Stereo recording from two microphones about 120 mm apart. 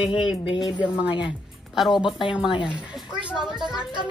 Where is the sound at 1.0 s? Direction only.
45° left (ahead or behind).